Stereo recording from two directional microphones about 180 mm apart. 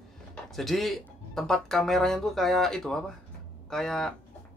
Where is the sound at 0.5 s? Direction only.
Centre (ahead or behind).